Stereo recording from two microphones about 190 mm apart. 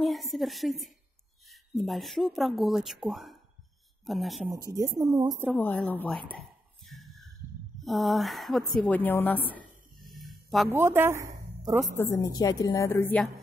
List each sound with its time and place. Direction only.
0.0 s speech: centre (ahead or behind)
4.5 s speech: 20° right (ahead or behind)
5.3 s speech: centre (ahead or behind)
6.9 s a sound: centre (ahead or behind)
7.8 s speech: centre (ahead or behind)
10.2 s a sound: centre (ahead or behind)
10.7 s a woman's voice: 10° right (ahead or behind)
12.0 s a woman's voice: 15° left (ahead or behind)